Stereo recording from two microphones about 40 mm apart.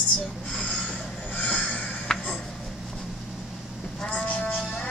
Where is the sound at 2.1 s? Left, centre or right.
Centre.